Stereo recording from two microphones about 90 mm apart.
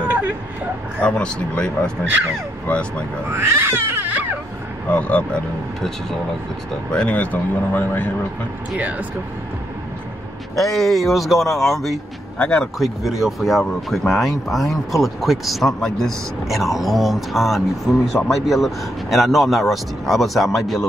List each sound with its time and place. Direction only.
1.0 s speech: 10° left (ahead or behind)
3.3 s cat: 30° right (ahead or behind)
4.8 s speech: 15° left (ahead or behind)
6.9 s speech: 10° left (ahead or behind)
8.7 s speech: 15° right (ahead or behind)
10.5 s speech: centre (ahead or behind)
12.7 s speech: centre (ahead or behind)